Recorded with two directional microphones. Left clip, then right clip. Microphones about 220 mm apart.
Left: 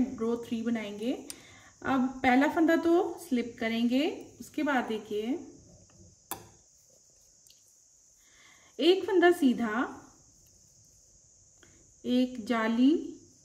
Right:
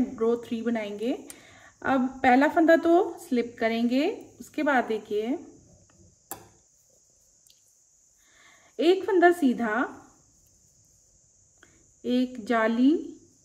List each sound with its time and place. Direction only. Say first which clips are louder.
0.1 s speech: right 6 dB; 5° left (ahead or behind)
8.4 s speech: right 3 dB; 10° left (ahead or behind)
11.6 s speech: right 5 dB; 10° left (ahead or behind)